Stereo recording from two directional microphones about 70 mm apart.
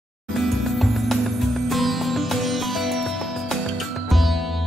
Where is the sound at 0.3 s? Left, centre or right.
Centre.